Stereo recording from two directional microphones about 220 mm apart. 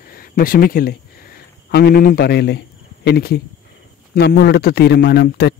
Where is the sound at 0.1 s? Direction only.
40° left (ahead or behind).